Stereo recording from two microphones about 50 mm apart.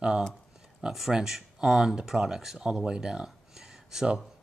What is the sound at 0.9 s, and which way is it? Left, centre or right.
Speech, centre.